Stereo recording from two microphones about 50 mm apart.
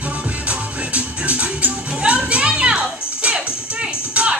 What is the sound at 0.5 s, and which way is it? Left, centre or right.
Music, right.